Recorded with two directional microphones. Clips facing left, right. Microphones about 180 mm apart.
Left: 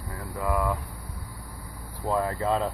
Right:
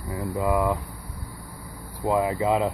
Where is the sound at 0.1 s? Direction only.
20° right (ahead or behind).